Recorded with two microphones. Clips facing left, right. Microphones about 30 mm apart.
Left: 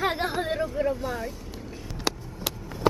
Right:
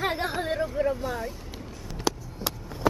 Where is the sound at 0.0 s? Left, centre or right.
Centre.